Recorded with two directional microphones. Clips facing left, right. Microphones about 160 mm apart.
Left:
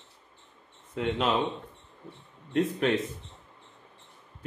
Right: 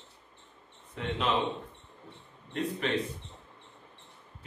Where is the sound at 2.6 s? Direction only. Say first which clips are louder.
Left 5 dB; 50° left (ahead or behind).